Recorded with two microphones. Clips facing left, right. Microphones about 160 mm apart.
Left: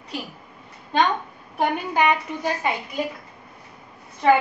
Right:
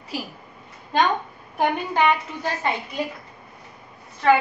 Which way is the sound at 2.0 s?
15° left (ahead or behind).